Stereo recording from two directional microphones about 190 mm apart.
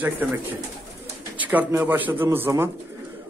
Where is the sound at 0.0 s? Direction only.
10° right (ahead or behind).